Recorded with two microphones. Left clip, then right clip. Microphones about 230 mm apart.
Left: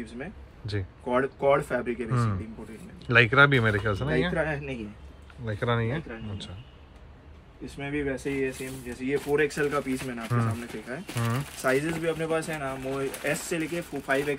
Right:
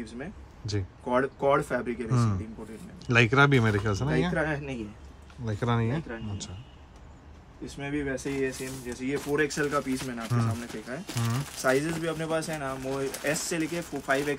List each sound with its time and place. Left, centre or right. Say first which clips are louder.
0.7 s speech: even; centre
3.1 s speech: left 3 dB; centre
7.6 s speech: left 2 dB; centre